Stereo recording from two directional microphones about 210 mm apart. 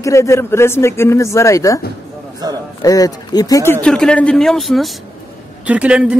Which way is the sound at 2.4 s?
20° right (ahead or behind).